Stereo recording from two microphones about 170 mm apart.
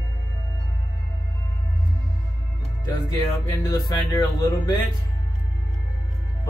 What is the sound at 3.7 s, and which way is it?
Speech, 20° left (ahead or behind).